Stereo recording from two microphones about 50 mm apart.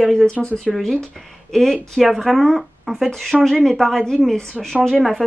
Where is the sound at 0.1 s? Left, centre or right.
Centre.